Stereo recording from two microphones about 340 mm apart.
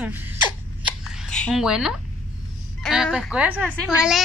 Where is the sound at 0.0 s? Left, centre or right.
Centre.